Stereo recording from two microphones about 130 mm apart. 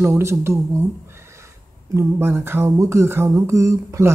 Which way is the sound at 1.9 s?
15° right (ahead or behind).